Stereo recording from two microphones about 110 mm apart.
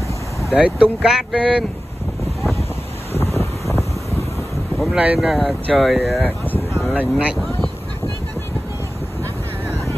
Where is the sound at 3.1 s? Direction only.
25° left (ahead or behind).